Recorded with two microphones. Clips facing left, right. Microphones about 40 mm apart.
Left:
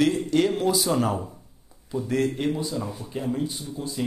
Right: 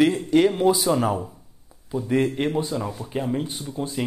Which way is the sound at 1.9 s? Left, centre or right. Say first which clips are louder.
Right 3 dB; right.